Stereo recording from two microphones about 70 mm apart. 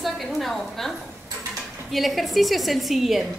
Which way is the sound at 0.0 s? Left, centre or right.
Centre.